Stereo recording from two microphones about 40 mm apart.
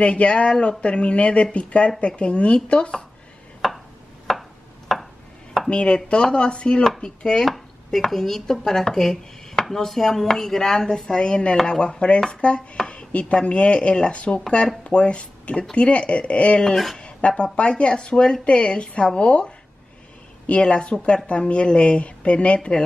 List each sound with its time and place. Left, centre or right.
0.0 s speech: left
3.6 s a sound: centre
5.7 s speech: left
7.4 s speech: centre; by 16.6 s left
16.7 s speech: centre
17.4 s speech: left